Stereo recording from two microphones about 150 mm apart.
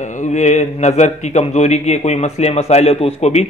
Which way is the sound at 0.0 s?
55° left (ahead or behind).